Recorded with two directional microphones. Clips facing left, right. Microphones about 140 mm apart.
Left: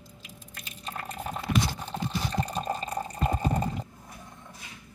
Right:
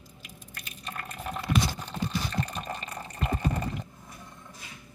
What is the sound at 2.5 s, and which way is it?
Water, 35° left (ahead or behind).